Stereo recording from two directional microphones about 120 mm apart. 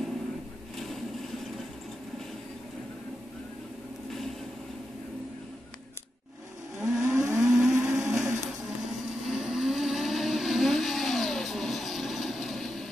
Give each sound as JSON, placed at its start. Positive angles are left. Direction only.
{"t": 0.7, "sound": "a sound", "side_deg": 0}
{"t": 6.8, "sound": "vehicle", "side_deg": -20}
{"t": 8.5, "sound": "vehicle", "side_deg": 0}